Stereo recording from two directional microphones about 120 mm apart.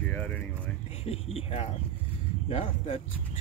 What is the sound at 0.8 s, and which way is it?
Speech, 55° left (ahead or behind).